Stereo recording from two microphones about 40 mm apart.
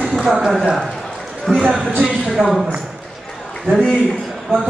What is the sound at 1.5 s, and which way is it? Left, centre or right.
Speech, centre.